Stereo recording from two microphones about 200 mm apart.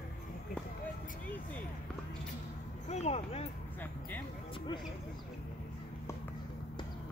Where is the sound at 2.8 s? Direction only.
35° left (ahead or behind).